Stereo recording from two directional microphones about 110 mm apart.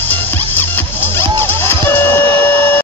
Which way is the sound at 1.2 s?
20° left (ahead or behind).